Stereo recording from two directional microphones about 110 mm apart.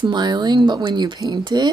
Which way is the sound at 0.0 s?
40° right (ahead or behind).